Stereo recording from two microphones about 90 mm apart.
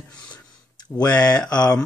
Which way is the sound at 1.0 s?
45° left (ahead or behind).